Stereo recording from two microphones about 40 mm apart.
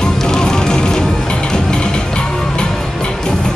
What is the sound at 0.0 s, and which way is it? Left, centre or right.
Music, centre.